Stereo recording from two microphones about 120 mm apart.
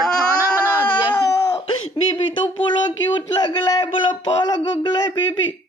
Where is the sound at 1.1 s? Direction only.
30° left (ahead or behind).